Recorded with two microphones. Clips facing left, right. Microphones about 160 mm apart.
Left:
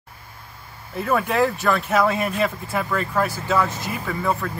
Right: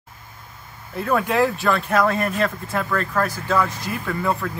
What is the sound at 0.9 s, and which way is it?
Speech, centre (ahead or behind).